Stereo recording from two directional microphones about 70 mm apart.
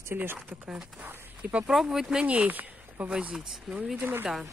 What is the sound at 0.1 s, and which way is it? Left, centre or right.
Speech, right.